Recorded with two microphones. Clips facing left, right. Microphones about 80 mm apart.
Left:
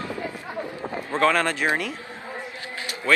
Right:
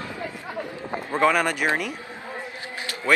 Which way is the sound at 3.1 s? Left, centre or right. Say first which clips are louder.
Even; right.